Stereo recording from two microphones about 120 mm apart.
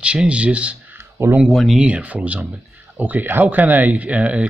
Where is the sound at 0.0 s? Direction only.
10° right (ahead or behind).